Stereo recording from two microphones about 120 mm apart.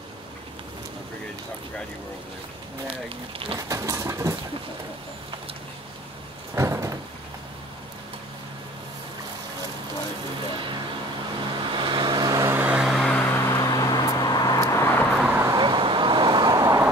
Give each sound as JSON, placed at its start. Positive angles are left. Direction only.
{"t": 2.9, "sound": "speech", "side_deg": -50}
{"t": 3.5, "sound": "a sound", "side_deg": -25}
{"t": 6.5, "sound": "cupboard open or close", "side_deg": -25}
{"t": 10.5, "sound": "vehicle", "side_deg": -45}
{"t": 12.8, "sound": "vehicle", "side_deg": 5}
{"t": 13.5, "sound": "vehicle", "side_deg": 30}
{"t": 14.6, "sound": "vehicle", "side_deg": 20}
{"t": 15.2, "sound": "vehicle", "side_deg": -20}
{"t": 15.5, "sound": "vehicle", "side_deg": -40}
{"t": 16.5, "sound": "vehicle", "side_deg": -25}